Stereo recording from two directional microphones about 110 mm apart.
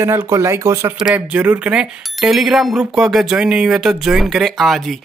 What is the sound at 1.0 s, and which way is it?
Speech, 10° right (ahead or behind).